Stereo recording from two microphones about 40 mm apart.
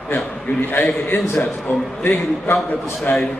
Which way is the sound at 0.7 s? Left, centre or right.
Left.